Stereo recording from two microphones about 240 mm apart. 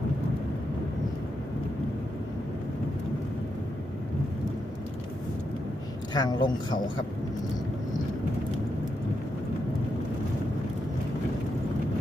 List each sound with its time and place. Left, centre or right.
6.1 s speech: centre